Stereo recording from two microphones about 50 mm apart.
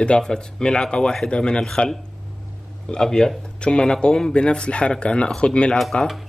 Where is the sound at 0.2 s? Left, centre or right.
Centre.